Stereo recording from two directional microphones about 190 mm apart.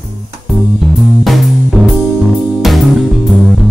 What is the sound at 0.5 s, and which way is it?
Music, centre (ahead or behind).